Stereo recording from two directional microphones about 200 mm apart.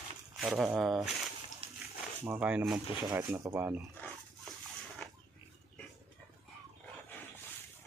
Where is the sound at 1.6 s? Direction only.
30° right (ahead or behind).